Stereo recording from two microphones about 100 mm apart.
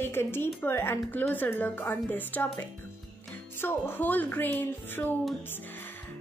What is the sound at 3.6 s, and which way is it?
Speech, 20° left (ahead or behind).